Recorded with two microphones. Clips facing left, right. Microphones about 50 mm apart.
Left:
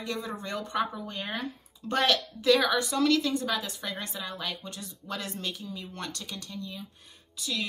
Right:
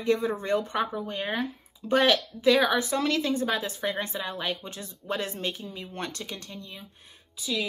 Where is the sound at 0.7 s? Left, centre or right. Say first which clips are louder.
Right 2 dB; centre.